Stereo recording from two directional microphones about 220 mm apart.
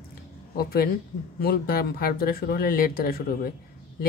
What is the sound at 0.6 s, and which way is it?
Speech, 45° left (ahead or behind).